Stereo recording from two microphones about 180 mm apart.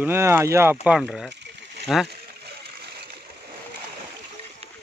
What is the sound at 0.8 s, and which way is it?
Speech, centre (ahead or behind).